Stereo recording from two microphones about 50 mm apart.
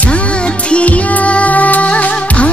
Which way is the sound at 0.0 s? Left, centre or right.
Left.